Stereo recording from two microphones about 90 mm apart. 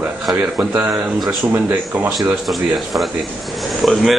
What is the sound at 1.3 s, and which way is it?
Speech, 20° right (ahead or behind).